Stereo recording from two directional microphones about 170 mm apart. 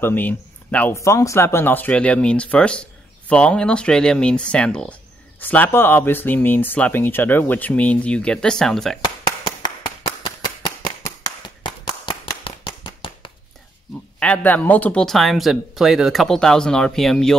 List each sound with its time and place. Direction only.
0.0 s speech: 10° left (ahead or behind)
11.1 s a sound: 20° left (ahead or behind)
14.2 s speech: 10° left (ahead or behind)